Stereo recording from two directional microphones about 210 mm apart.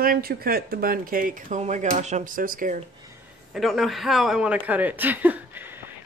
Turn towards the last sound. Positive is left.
turn(degrees=-10)  # may be behind; listen again after turning